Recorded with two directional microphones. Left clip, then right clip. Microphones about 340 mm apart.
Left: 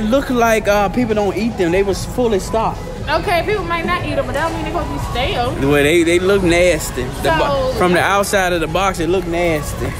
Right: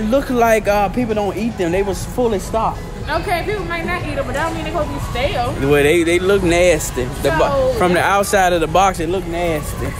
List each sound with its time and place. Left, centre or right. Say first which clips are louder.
0.1 s speech: even; centre
5.1 s speech: left 1 dB; centre